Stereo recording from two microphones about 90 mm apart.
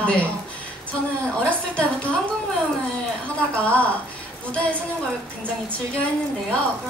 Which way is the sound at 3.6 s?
15° left (ahead or behind).